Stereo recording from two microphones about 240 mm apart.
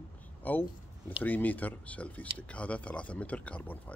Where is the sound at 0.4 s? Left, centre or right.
Centre.